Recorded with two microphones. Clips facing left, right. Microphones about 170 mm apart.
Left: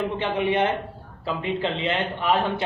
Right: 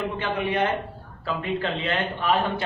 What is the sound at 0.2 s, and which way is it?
A man's voice, 25° left (ahead or behind).